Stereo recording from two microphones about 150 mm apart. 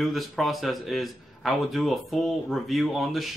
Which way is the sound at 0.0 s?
Centre (ahead or behind).